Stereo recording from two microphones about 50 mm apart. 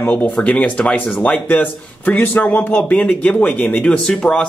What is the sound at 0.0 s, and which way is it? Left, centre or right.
Speech, left.